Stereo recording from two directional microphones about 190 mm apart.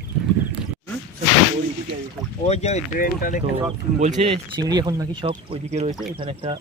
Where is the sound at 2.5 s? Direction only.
35° left (ahead or behind).